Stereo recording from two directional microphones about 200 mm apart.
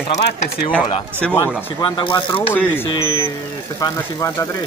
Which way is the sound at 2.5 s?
10° left (ahead or behind).